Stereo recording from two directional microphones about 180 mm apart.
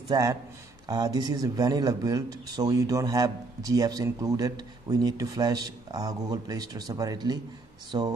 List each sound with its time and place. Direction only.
0.1 s a man's voice: 20° right (ahead or behind)